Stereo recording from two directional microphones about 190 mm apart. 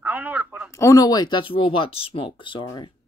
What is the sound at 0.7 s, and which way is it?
Speech, 15° left (ahead or behind).